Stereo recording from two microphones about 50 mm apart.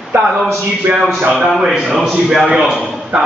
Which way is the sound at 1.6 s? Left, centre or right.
Centre.